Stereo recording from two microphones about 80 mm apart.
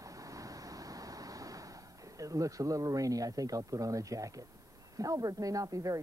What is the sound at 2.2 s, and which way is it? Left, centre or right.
Speech, right.